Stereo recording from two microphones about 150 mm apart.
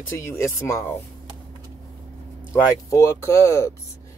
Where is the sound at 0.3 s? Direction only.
20° left (ahead or behind).